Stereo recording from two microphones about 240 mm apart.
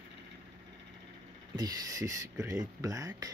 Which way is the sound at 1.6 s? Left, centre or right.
Centre.